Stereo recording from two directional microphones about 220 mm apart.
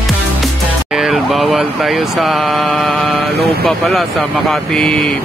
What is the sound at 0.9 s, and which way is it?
Speech, centre (ahead or behind).